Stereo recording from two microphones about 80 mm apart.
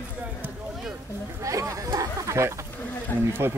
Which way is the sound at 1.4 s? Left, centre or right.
Right.